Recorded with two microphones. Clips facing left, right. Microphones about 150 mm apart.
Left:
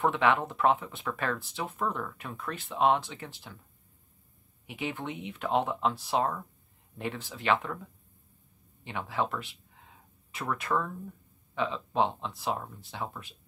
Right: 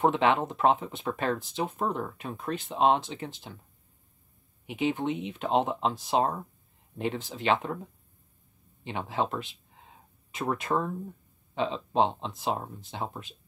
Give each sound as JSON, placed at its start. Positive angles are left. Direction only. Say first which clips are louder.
{"t": 0.0, "sound": "speech", "louder": "right 2 dB", "side_deg": -20}
{"t": 4.6, "sound": "speech", "louder": "right 7 dB", "side_deg": -20}